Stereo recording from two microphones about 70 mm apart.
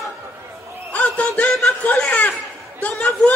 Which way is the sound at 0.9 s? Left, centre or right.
Left.